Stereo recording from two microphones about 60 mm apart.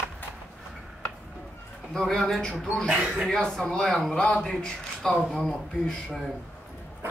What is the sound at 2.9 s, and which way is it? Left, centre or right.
Speech, centre.